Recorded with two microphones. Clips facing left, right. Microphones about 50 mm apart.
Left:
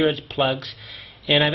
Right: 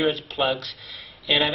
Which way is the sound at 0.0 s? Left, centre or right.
Centre.